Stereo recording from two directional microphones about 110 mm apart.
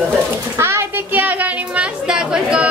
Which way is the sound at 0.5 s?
25° right (ahead or behind).